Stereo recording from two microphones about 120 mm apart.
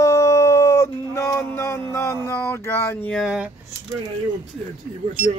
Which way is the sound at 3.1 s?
5° right (ahead or behind).